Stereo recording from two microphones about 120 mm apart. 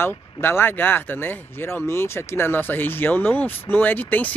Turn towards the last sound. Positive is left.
turn(degrees=15)  # may be behind; listen again after turning